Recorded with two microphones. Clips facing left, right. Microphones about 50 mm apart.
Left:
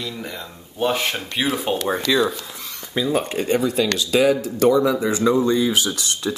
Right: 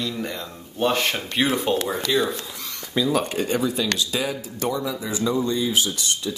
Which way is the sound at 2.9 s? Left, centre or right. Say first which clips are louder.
Left 1 dB; left.